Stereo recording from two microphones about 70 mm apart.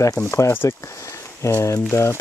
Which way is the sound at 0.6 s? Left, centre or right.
Left.